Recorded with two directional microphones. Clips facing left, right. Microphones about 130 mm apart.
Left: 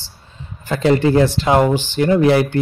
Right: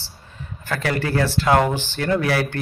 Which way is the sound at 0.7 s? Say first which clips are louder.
Left 9 dB; 20° left (ahead or behind).